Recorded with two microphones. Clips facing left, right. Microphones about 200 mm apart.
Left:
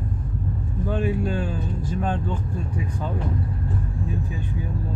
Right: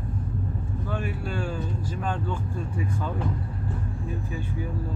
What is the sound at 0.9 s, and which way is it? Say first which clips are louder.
Speech: left 8 dB; 15° left (ahead or behind).